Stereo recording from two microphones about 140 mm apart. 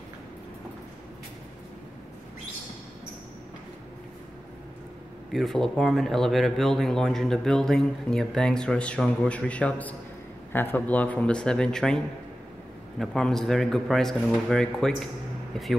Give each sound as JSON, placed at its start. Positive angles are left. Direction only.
{"t": 5.3, "sound": "speech", "side_deg": 0}
{"t": 13.0, "sound": "speech", "side_deg": 5}